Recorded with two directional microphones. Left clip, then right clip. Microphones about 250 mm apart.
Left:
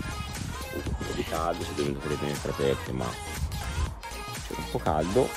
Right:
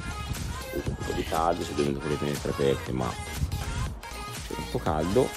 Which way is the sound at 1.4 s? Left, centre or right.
Centre.